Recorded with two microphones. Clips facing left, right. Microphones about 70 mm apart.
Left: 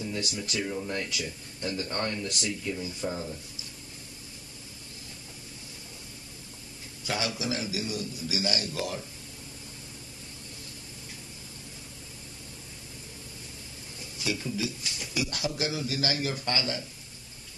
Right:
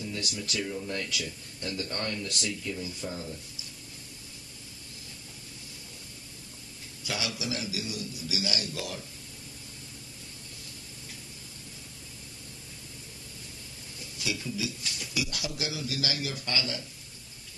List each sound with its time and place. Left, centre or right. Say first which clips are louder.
0.0 s speech: left 2 dB; left
7.1 s a man's voice: left 3 dB; left
14.2 s a man's voice: left 2 dB; left